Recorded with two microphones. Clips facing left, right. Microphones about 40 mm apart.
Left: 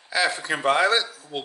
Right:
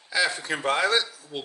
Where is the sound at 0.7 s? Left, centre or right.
Centre.